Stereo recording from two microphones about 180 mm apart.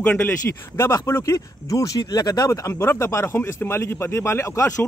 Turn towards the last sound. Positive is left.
turn(degrees=15)  # may be behind; listen again after turning